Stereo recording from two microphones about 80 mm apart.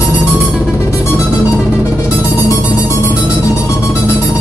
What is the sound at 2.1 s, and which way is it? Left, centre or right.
Music, left.